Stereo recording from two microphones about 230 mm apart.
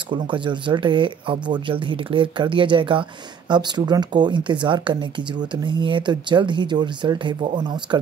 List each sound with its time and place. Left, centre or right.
0.1 s speech: right